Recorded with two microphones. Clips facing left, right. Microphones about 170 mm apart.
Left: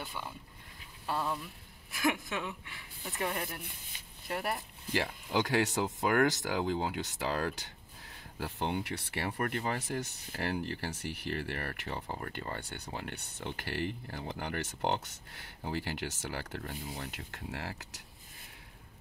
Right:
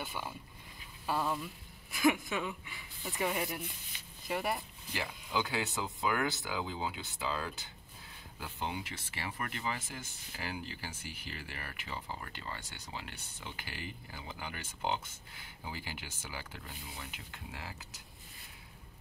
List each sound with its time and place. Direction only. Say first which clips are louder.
0.0 s a woman's voice: right 1 dB; 5° right (ahead or behind)
4.9 s speech: left 4 dB; 75° left (ahead or behind)
8.5 s speech: left 5 dB; 65° left (ahead or behind)